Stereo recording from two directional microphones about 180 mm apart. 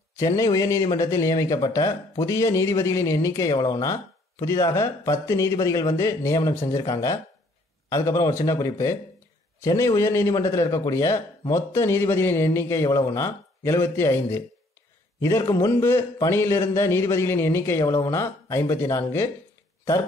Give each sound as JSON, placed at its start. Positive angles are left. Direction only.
{"t": 0.2, "sound": "speech", "side_deg": 20}